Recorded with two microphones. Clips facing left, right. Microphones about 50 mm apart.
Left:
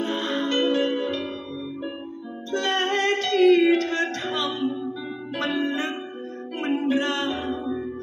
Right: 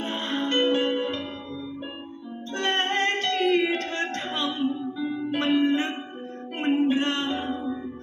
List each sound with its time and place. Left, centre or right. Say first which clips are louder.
0.0 s music: left 3 dB; right
2.5 s music: left 2 dB; right